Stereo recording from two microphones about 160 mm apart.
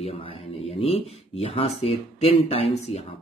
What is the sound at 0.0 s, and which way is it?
Speech, 40° left (ahead or behind).